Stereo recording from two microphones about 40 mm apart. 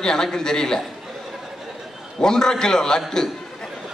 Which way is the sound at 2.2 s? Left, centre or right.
Centre.